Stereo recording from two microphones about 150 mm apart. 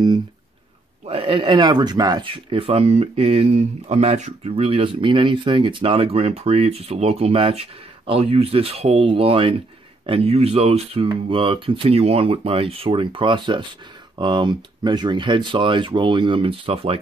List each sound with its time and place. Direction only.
1.0 s speech: 35° right (ahead or behind)